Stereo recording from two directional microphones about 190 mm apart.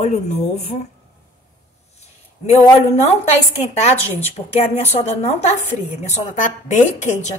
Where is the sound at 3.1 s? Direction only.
35° left (ahead or behind).